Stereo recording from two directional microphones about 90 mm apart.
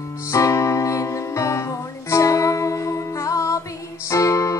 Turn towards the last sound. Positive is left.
turn(degrees=35)  # may be behind; listen again after turning